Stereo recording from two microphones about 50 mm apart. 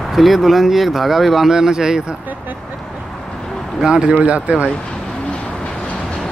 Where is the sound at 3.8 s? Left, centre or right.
Centre.